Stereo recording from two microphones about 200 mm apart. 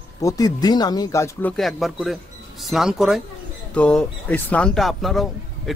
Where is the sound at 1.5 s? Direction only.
Centre (ahead or behind).